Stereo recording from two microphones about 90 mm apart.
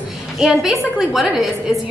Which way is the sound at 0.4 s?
5° right (ahead or behind).